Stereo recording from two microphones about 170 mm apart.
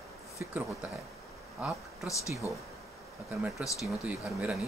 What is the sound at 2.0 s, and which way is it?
Speech, 20° left (ahead or behind).